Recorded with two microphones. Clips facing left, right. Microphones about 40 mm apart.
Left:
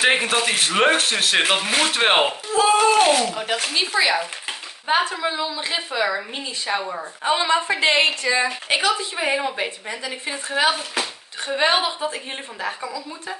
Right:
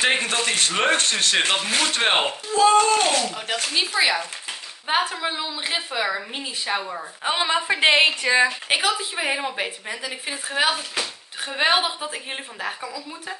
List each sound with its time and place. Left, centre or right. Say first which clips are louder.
0.0 s a woman's voice: left 3 dB; centre
5.2 s a woman's voice: left 3 dB; centre
5.8 s a woman's voice: left 3 dB; centre
7.9 s a woman's voice: right 1 dB; centre
8.2 s a woman's voice: right 2 dB; right
8.7 s a woman's voice: left 2 dB; centre